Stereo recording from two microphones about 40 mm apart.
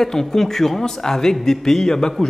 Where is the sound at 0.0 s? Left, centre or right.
Centre.